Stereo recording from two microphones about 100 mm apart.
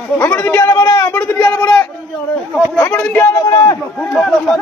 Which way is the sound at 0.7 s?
30° left (ahead or behind).